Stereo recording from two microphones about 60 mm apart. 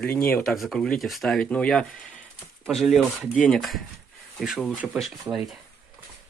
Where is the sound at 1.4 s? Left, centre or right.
Centre.